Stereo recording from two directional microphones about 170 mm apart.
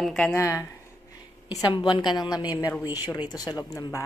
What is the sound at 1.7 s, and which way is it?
Speech, 25° left (ahead or behind).